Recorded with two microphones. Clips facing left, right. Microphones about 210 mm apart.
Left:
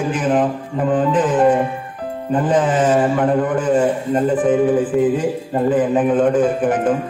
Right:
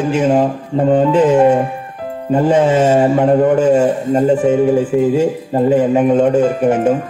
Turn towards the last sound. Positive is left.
turn(degrees=-25)  # may be behind; listen again after turning